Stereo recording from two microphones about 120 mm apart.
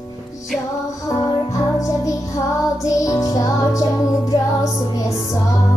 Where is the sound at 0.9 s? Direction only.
30° left (ahead or behind).